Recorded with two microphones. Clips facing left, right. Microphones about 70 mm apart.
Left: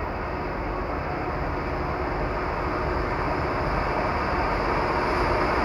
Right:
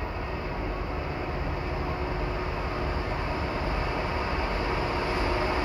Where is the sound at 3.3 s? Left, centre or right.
Left.